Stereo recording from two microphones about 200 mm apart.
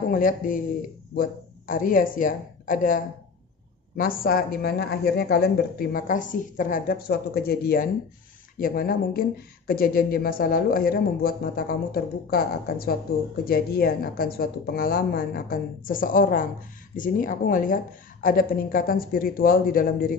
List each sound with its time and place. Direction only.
0.1 s speech: 45° left (ahead or behind)